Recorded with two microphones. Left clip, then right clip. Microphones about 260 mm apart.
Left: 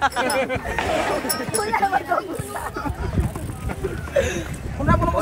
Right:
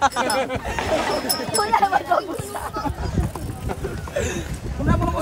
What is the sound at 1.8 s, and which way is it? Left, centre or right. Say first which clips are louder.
Speech: right 2 dB; centre.